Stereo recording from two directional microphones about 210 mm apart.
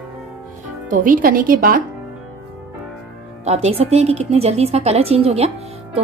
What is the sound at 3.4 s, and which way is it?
Speech, 30° right (ahead or behind).